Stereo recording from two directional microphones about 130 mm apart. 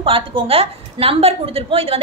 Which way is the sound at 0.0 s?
45° right (ahead or behind).